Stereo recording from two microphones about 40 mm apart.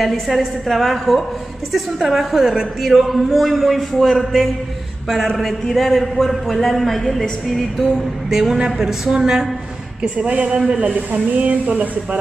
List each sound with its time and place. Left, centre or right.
0.0 s a man's voice: centre
8.8 s a woman's voice: centre
10.1 s speech: right